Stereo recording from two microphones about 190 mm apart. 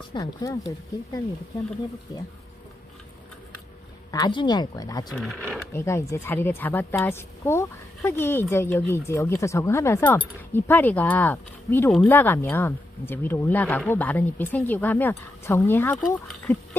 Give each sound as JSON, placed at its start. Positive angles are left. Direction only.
{"t": 0.1, "sound": "speech", "side_deg": 15}
{"t": 4.1, "sound": "speech", "side_deg": 20}
{"t": 5.1, "sound": "speech", "side_deg": 0}
{"t": 5.7, "sound": "speech", "side_deg": 15}